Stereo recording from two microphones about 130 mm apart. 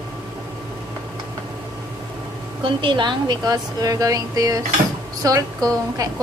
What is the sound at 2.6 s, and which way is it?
A woman's voice, 40° right (ahead or behind).